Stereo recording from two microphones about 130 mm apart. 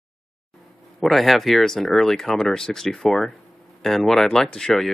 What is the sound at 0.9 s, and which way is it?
Speech, centre (ahead or behind).